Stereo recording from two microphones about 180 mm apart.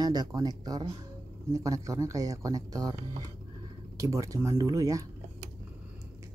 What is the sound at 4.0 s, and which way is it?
Speech, 20° right (ahead or behind).